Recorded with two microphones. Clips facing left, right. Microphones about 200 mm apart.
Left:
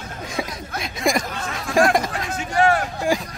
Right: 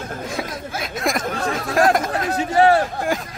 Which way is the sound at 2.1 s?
35° right (ahead or behind).